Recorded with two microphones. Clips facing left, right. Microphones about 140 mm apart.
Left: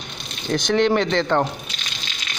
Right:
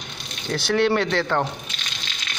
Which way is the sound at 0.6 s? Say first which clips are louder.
Left 2 dB; 20° left (ahead or behind).